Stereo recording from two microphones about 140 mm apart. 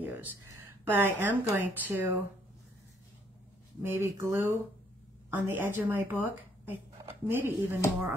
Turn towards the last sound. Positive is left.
turn(degrees=-15)  # may be behind; listen again after turning